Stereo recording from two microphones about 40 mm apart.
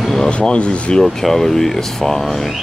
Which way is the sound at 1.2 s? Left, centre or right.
Centre.